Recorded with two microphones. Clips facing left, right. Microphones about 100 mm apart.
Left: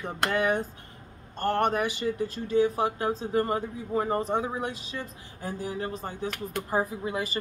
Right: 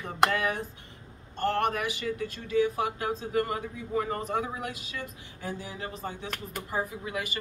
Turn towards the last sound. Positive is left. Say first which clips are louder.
# left 4 dB
turn(degrees=30)  # may be behind; listen again after turning